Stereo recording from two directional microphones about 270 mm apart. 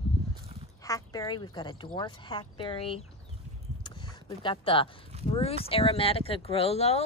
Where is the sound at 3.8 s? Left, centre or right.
Centre.